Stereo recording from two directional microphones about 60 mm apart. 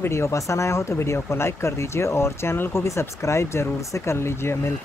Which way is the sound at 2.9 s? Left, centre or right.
Left.